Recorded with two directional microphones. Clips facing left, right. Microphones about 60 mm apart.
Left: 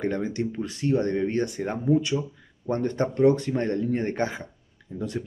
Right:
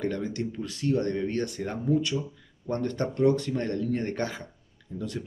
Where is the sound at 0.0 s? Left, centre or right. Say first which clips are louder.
Left 3 dB; left.